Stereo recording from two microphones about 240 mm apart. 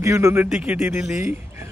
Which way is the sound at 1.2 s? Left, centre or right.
Centre.